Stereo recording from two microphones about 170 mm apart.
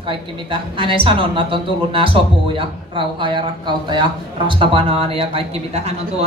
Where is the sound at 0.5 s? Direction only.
30° right (ahead or behind).